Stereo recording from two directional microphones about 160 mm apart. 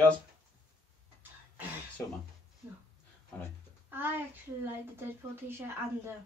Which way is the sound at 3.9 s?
15° right (ahead or behind).